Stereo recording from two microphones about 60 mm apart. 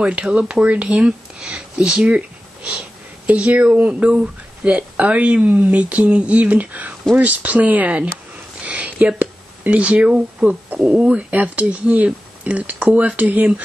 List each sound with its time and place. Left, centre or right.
0.0 s speech: centre
8.5 s a sound: right
10.8 s speech: centre